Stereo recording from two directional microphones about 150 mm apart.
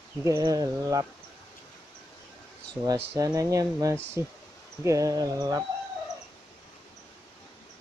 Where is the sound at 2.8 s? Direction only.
20° right (ahead or behind).